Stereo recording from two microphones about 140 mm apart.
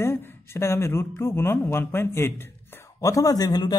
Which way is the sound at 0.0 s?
15° left (ahead or behind).